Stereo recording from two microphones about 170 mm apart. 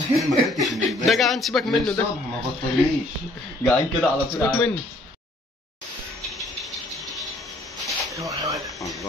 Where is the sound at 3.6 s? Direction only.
5° left (ahead or behind).